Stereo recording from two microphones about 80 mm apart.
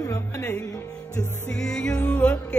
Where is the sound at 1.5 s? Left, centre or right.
Centre.